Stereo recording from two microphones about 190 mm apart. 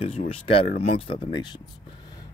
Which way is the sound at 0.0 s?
30° left (ahead or behind).